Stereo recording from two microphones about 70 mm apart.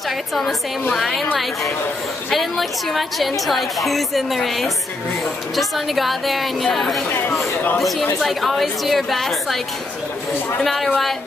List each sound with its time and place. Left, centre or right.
0.3 s a woman's voice: centre
2.3 s a woman's voice: centre
7.1 s speech: left
8.2 s a woman's voice: centre
10.6 s a woman's voice: centre